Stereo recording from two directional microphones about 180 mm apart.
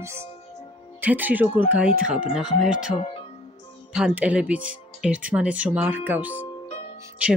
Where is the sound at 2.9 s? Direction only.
30° left (ahead or behind).